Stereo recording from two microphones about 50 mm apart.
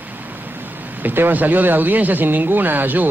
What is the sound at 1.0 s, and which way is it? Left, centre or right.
A man's voice, right.